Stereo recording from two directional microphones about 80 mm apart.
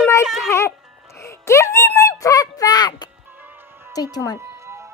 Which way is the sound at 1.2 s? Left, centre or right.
Left.